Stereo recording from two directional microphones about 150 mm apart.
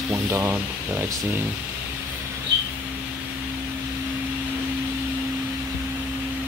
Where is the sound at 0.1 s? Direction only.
20° right (ahead or behind).